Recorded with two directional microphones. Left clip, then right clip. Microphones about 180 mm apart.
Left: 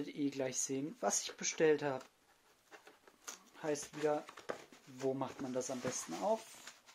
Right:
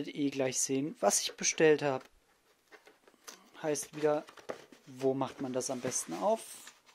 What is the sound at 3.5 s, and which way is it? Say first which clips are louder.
Speech: right 5 dB; 50° right (ahead or behind).